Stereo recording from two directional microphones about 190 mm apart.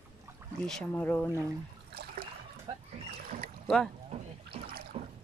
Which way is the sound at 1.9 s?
55° right (ahead or behind).